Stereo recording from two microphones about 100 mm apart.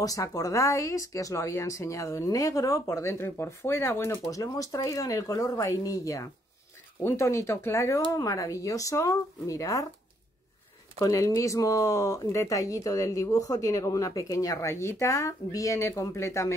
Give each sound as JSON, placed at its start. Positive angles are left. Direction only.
{"t": 0.0, "sound": "speech", "side_deg": 35}
{"t": 11.0, "sound": "speech", "side_deg": 30}